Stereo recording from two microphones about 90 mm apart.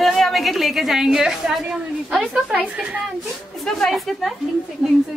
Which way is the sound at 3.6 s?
Centre (ahead or behind).